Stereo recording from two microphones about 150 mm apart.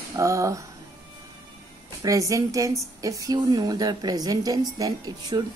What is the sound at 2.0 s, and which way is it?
A woman's voice, 20° right (ahead or behind).